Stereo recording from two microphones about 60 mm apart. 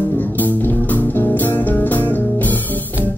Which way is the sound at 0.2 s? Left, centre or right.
Left.